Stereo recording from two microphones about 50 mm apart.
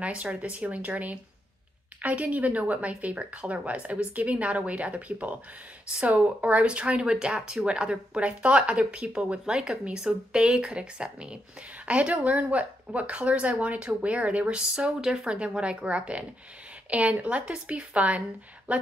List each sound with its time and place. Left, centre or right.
0.0 s speech: right